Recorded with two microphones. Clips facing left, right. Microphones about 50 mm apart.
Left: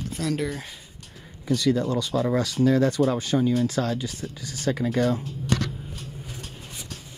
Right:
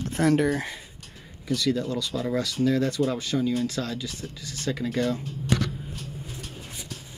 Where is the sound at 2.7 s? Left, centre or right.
Left.